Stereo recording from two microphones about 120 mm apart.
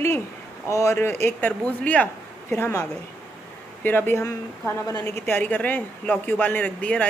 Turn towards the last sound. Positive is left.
turn(degrees=10)  # may be behind; listen again after turning